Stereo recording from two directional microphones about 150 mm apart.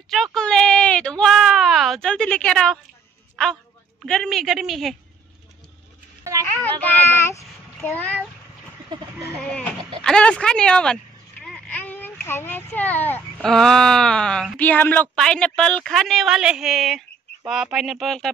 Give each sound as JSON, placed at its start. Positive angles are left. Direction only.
{"t": 0.1, "sound": "a sound", "side_deg": 0}
{"t": 3.4, "sound": "speech", "side_deg": 5}
{"t": 6.6, "sound": "a child's voice", "side_deg": 10}
{"t": 8.9, "sound": "speech", "side_deg": -30}
{"t": 9.4, "sound": "a sound", "side_deg": 5}
{"t": 10.0, "sound": "speech", "side_deg": 5}